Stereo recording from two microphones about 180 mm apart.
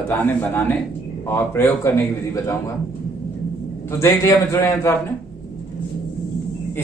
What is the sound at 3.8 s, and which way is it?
A man's voice, 15° left (ahead or behind).